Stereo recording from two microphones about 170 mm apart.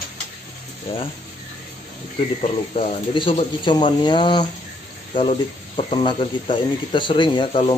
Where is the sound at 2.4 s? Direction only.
35° left (ahead or behind).